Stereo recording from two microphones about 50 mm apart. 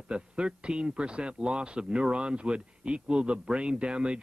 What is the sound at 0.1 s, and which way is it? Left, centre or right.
Speech, centre.